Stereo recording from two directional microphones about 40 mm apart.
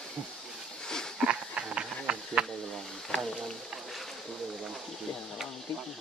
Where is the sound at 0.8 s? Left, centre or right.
Centre.